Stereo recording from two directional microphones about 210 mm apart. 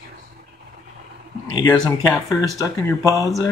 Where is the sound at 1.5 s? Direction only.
15° left (ahead or behind).